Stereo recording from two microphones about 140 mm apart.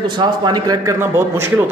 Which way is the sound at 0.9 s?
15° right (ahead or behind).